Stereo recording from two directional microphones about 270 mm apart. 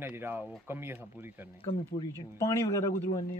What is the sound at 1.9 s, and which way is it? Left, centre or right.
Speech, left.